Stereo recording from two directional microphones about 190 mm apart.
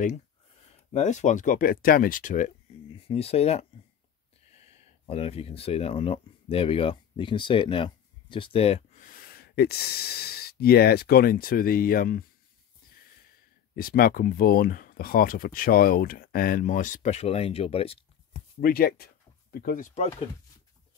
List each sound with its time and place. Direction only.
0.9 s speech: 40° left (ahead or behind)
13.7 s speech: 50° left (ahead or behind); by 18.4 s 30° left (ahead or behind)
18.6 s speech: 50° left (ahead or behind)